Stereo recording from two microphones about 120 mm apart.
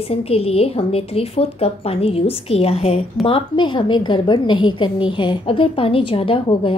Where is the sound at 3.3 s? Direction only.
45° left (ahead or behind).